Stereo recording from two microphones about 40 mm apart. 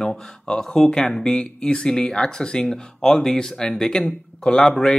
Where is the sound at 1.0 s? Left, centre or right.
Centre.